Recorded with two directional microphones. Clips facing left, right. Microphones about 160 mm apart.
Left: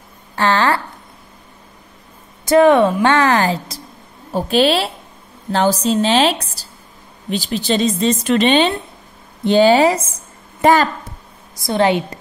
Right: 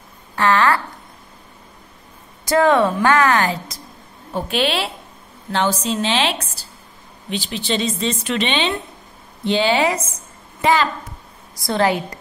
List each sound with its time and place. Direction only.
0.4 s a woman's voice: 30° left (ahead or behind)
2.4 s a woman's voice: 20° left (ahead or behind); by 10.0 s 35° left (ahead or behind)
10.6 s a woman's voice: 45° left (ahead or behind)
11.5 s a woman's voice: 20° left (ahead or behind)